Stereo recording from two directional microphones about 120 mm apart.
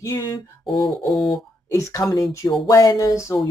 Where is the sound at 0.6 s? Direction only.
45° left (ahead or behind).